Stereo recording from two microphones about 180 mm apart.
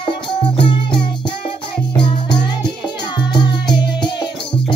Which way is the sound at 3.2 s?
25° left (ahead or behind).